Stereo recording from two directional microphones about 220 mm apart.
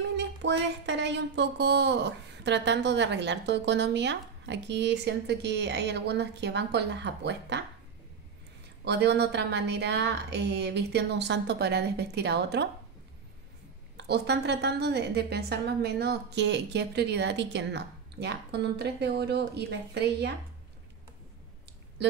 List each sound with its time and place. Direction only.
0.2 s speech: 55° right (ahead or behind)
8.8 s speech: 50° right (ahead or behind)
13.9 s speech: 50° right (ahead or behind)